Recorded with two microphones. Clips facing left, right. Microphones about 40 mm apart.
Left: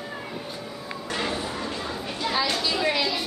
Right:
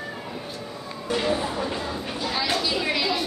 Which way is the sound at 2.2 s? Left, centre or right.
Centre.